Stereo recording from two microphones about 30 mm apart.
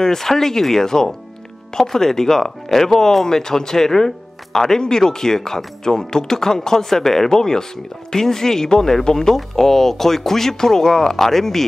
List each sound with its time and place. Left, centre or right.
0.0 s speech: centre